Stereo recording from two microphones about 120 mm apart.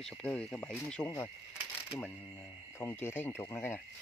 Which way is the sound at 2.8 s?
20° left (ahead or behind).